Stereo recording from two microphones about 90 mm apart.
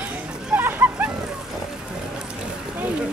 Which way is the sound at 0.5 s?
25° right (ahead or behind).